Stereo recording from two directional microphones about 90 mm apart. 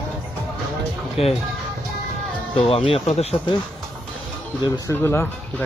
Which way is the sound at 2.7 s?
85° left.